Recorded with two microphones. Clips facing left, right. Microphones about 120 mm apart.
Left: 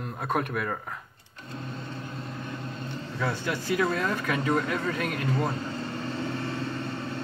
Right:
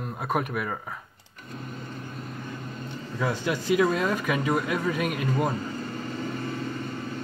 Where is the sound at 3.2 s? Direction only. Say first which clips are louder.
Right 3 dB; 15° right (ahead or behind).